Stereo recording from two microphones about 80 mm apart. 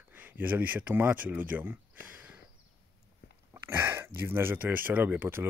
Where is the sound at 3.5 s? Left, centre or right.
Right.